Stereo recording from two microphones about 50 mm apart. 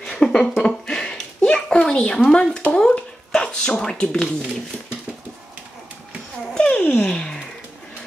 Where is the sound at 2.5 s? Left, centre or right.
Centre.